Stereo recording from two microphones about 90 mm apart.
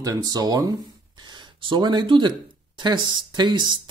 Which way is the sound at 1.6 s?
60° right (ahead or behind).